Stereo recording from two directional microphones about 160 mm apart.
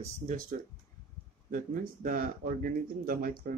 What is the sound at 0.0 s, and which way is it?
Speech, 55° right (ahead or behind).